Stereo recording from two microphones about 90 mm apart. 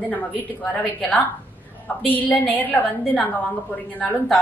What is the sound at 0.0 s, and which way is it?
A woman's voice, 20° left (ahead or behind).